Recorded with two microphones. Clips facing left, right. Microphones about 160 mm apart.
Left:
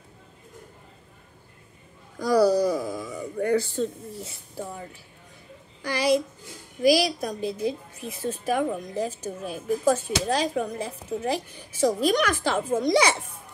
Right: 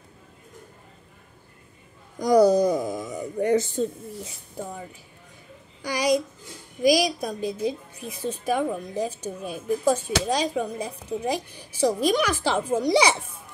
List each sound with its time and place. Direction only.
2.1 s speech: 20° right (ahead or behind)
5.8 s a child's voice: 15° right (ahead or behind)